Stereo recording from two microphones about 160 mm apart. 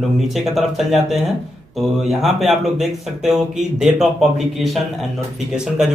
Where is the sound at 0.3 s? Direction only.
Centre (ahead or behind).